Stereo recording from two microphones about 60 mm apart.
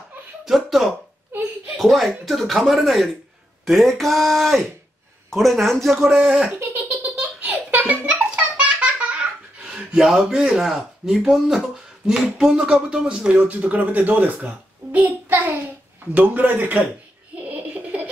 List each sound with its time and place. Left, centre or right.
0.5 s speech: centre
5.9 s speech: centre
7.0 s baby laughter: right
9.6 s speech: centre; by 16.8 s right
17.4 s laughter: right